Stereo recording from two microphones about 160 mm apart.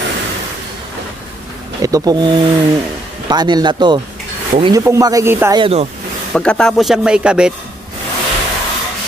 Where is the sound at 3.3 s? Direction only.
25° right (ahead or behind).